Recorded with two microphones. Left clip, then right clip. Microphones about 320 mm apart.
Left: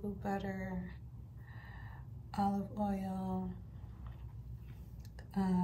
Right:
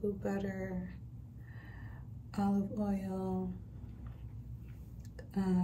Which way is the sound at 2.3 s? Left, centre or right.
Centre.